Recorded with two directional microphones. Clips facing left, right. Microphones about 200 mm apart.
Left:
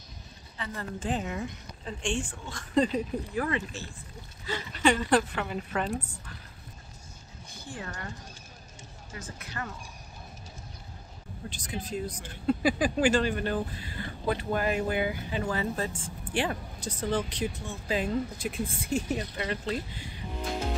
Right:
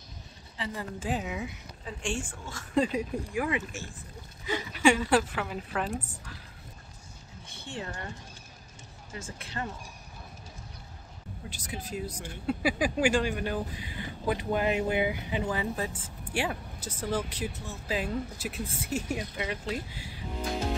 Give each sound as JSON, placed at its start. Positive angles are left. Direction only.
{"t": 0.7, "sound": "a woman's voice", "side_deg": -10}
{"t": 7.4, "sound": "a sound", "side_deg": -25}
{"t": 9.1, "sound": "speech", "side_deg": -25}
{"t": 11.4, "sound": "speech", "side_deg": -5}